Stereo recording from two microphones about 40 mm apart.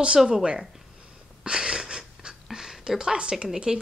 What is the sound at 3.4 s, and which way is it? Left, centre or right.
Speech, right.